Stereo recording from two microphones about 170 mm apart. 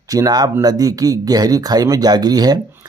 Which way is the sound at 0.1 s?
20° right (ahead or behind).